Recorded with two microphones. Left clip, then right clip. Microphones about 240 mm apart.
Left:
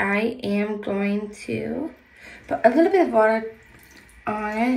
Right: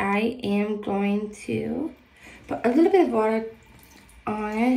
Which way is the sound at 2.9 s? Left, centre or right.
Centre.